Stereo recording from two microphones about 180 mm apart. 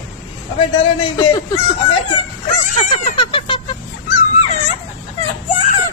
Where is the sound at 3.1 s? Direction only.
30° left (ahead or behind).